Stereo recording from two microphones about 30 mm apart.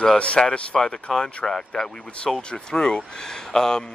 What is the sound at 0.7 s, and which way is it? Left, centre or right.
Speech, centre.